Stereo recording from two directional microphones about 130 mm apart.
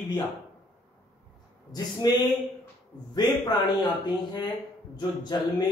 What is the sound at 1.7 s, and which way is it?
Speech, 30° left (ahead or behind).